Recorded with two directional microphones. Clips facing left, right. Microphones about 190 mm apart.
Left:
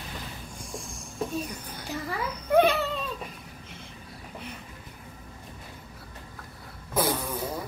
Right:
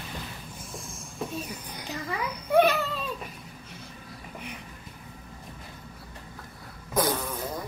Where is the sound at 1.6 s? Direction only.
15° right (ahead or behind).